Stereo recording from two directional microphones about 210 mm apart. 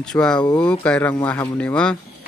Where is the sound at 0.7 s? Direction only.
5° left (ahead or behind).